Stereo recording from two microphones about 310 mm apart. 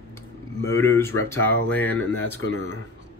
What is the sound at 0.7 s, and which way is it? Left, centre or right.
Speech, centre.